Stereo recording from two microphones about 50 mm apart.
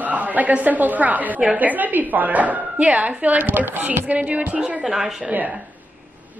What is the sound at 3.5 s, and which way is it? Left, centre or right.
A woman's voice, right.